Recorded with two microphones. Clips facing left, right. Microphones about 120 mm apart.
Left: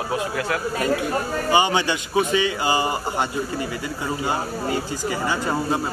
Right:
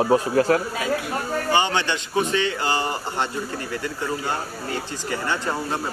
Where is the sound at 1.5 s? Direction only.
10° left (ahead or behind).